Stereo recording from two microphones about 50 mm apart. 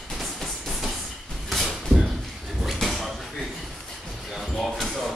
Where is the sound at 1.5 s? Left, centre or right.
Centre.